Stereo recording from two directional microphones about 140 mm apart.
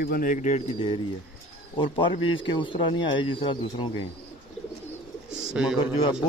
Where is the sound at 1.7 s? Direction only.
35° left (ahead or behind).